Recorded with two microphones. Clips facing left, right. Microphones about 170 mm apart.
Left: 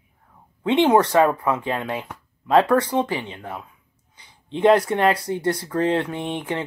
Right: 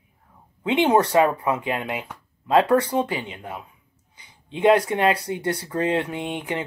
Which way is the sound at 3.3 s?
10° right (ahead or behind).